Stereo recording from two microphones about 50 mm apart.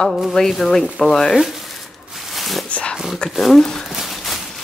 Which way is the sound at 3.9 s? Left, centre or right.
Centre.